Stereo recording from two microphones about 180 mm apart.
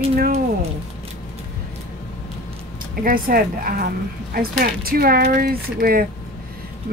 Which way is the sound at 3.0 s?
50° right (ahead or behind).